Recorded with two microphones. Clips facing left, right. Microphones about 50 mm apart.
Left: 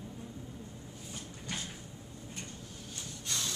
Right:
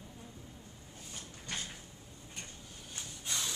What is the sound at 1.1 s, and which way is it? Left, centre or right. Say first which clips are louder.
Sliding door: left 2 dB; centre.